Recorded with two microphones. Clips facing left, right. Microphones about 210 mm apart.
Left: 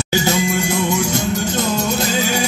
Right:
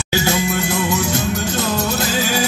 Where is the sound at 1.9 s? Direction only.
20° left (ahead or behind).